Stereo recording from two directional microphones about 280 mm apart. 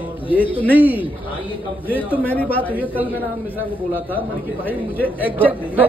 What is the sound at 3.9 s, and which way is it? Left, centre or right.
Speech, centre.